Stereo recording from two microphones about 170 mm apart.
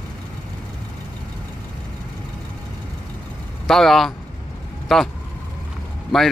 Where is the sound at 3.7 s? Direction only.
Centre (ahead or behind).